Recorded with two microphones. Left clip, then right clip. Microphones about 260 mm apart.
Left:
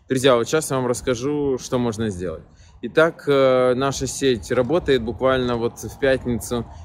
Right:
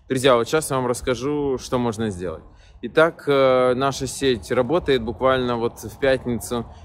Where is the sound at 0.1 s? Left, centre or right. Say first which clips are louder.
Even; centre.